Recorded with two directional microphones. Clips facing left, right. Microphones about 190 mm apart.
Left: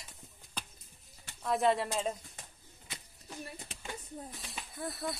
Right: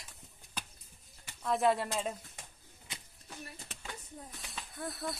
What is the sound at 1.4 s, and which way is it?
Speech, centre (ahead or behind).